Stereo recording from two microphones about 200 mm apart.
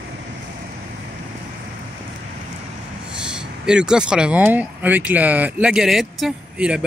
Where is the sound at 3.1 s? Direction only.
5° right (ahead or behind).